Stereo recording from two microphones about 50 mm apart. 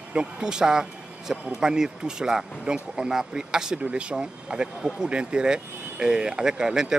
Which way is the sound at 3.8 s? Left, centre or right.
Right.